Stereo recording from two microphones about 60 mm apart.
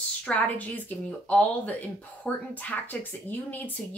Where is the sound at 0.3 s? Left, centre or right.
Left.